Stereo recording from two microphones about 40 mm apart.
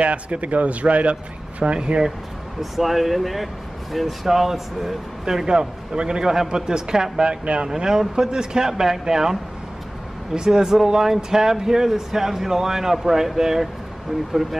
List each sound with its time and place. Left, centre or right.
0.0 s speech: right
2.6 s speech: centre